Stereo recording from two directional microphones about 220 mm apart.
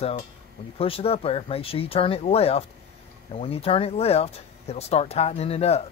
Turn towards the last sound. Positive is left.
turn(degrees=30)  # may be behind; listen again after turning